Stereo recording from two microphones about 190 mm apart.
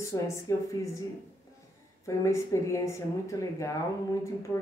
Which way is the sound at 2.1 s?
15° left (ahead or behind).